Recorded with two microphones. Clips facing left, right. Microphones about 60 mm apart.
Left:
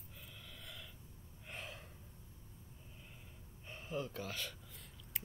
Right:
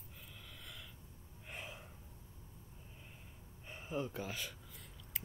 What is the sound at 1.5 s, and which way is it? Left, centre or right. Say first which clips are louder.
Gasp: even; centre.